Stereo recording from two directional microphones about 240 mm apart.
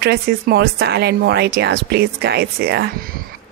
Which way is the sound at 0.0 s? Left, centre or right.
Right.